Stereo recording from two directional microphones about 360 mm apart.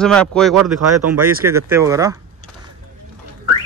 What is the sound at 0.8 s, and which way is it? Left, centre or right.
Speech, right.